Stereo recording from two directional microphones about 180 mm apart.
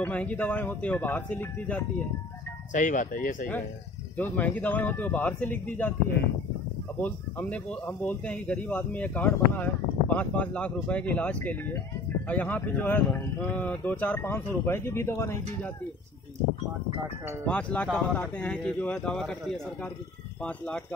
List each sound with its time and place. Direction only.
0.0 s speech: 10° left (ahead or behind)
2.7 s speech: 45° left (ahead or behind)
4.2 s speech: 10° left (ahead or behind)
7.0 s speech: 10° left (ahead or behind)
17.5 s speech: 5° left (ahead or behind)